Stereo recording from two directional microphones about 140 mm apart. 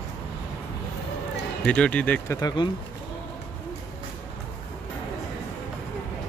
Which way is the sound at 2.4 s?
30° left (ahead or behind).